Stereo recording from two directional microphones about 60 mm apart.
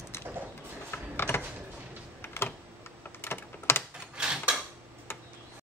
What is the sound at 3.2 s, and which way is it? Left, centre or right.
Typing, left.